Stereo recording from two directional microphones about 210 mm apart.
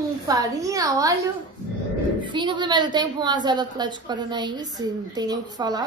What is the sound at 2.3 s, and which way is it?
A woman's voice, 20° right (ahead or behind).